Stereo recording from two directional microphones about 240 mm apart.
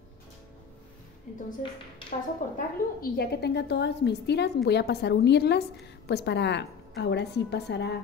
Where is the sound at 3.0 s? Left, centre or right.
Left.